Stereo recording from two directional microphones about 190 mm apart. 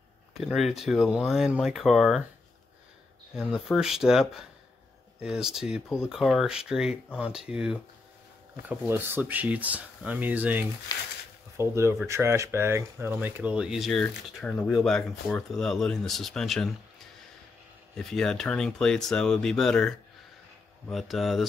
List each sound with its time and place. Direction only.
0.4 s speech: centre (ahead or behind)
3.3 s speech: centre (ahead or behind)
10.9 s speech: 20° left (ahead or behind)
11.5 s speech: 15° right (ahead or behind); by 16.7 s centre (ahead or behind)
17.9 s speech: 5° left (ahead or behind)